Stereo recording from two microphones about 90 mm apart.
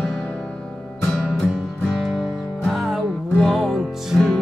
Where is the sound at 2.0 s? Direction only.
Centre (ahead or behind).